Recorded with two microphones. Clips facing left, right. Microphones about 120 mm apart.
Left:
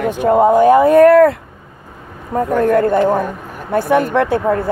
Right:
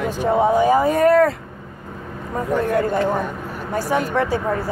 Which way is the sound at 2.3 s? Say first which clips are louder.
Left 6 dB; 50° left (ahead or behind).